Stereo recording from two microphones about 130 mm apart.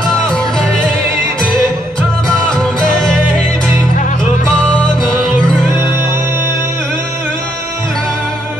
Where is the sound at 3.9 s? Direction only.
80° left.